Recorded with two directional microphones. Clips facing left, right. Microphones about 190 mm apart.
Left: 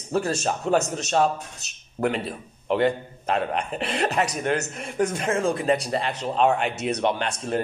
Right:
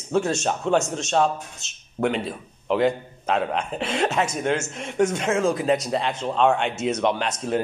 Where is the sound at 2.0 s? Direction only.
5° left (ahead or behind).